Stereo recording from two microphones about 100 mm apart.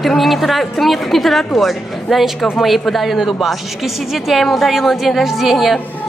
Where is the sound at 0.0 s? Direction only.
Centre (ahead or behind).